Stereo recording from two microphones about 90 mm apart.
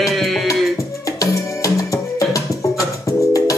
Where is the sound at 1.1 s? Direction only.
40° left (ahead or behind).